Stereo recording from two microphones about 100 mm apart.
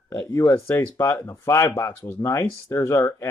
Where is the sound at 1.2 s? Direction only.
30° left (ahead or behind).